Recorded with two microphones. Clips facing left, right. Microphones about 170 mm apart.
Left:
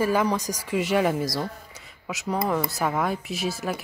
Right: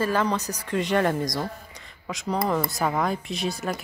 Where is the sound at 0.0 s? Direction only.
10° left (ahead or behind).